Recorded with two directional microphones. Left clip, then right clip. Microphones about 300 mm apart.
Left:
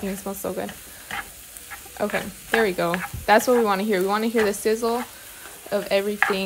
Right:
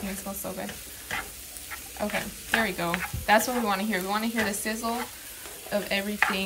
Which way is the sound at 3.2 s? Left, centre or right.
Centre.